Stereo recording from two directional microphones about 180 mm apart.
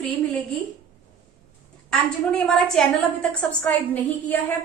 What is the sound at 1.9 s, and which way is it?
A woman's voice, 5° left (ahead or behind).